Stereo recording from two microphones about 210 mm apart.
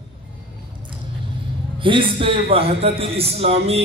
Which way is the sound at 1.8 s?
25° right (ahead or behind).